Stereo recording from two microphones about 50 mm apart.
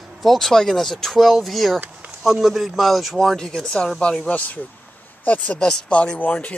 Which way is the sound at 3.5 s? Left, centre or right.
Centre.